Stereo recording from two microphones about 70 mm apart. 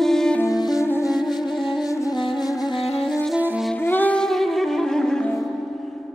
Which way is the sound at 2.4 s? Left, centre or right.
Left.